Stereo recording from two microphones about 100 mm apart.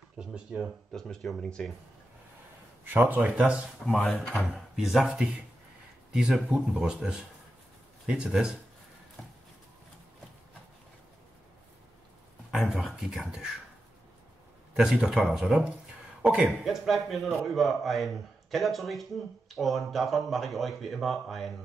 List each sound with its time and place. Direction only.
0.2 s speech: 10° right (ahead or behind)
0.9 s a man's voice: 5° left (ahead or behind)
2.8 s speech: 20° right (ahead or behind)
4.4 s a man's voice: centre (ahead or behind)
12.5 s speech: 5° right (ahead or behind)
14.7 s speech: 5° right (ahead or behind)
16.4 s a man's voice: centre (ahead or behind)